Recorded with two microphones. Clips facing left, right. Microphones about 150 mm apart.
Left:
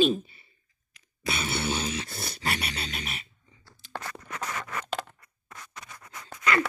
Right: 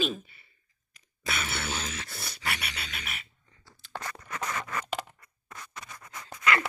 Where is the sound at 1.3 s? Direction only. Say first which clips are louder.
Left 4 dB; 30° left (ahead or behind).